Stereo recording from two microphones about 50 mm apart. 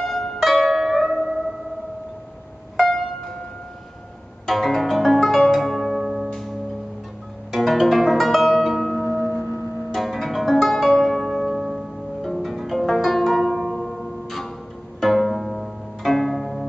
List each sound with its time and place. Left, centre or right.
0.0 s pizzicato: centre
0.5 s zither: centre
2.8 s music: centre
4.5 s music: centre
5.5 s zither: centre
6.0 s music: centre
7.5 s music: centre
8.9 s music: left
9.9 s zither: centre
11.2 s music: centre
12.4 s pizzicato: centre